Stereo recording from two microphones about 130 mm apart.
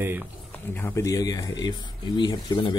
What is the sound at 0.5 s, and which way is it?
Speech, 15° left (ahead or behind).